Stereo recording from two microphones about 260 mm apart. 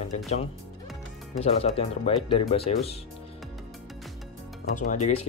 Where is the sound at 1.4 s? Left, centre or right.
Left.